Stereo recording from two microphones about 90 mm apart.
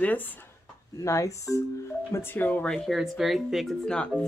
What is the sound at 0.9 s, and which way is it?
Speech, 35° left (ahead or behind).